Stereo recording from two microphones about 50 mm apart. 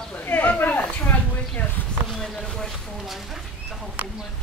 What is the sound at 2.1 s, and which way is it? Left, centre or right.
Speech, centre.